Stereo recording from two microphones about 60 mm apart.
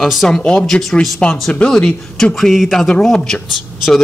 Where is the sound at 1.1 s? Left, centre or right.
Centre.